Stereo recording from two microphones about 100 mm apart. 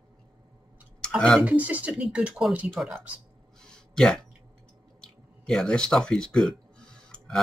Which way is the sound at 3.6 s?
5° left (ahead or behind).